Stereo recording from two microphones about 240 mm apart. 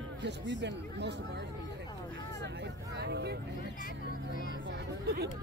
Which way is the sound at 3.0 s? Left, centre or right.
Right.